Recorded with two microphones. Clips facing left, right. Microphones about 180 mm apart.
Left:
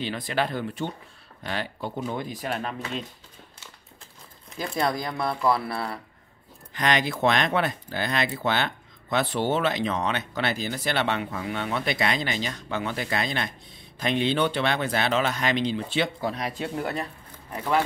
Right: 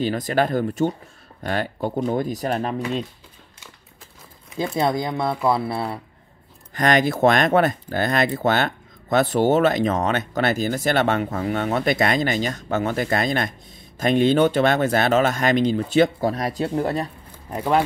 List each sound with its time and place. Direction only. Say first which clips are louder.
0.0 s speech: right 7 dB; 45° right (ahead or behind)
4.7 s speech: right 4 dB; 25° right (ahead or behind)
6.7 s speech: right 6 dB; 45° right (ahead or behind); by 17.8 s 30° right (ahead or behind)